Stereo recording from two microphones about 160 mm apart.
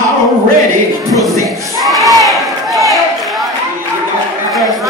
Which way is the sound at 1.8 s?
Centre (ahead or behind).